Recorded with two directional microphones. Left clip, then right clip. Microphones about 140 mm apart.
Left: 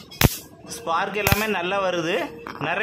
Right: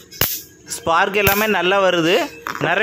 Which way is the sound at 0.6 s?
35° right (ahead or behind).